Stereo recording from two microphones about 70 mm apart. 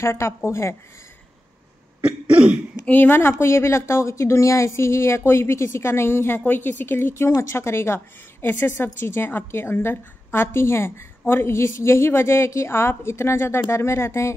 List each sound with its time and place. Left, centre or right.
0.0 s a woman's voice: left
2.0 s cough: centre
2.9 s a woman's voice: left